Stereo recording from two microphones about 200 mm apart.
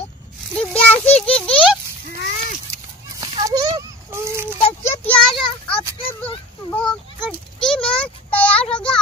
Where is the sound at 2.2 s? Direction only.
45° left (ahead or behind).